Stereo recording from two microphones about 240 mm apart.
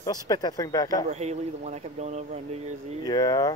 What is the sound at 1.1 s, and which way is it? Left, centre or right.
Speech, right.